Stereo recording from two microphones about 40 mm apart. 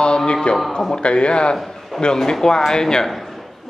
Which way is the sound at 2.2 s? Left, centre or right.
Centre.